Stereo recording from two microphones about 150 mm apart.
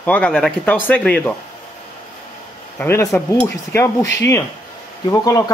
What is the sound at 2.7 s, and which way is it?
Speech, 15° left (ahead or behind).